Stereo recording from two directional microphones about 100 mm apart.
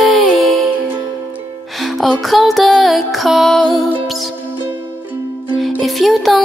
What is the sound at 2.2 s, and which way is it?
Music, centre (ahead or behind).